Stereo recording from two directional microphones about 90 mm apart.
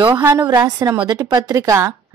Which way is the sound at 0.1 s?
25° right (ahead or behind).